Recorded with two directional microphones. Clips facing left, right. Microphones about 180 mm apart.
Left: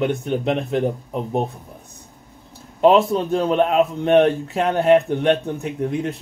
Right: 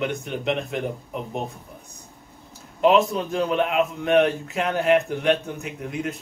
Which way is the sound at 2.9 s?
35° left (ahead or behind).